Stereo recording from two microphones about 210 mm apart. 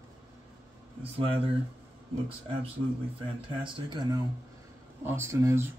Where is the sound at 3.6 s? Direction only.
20° right (ahead or behind).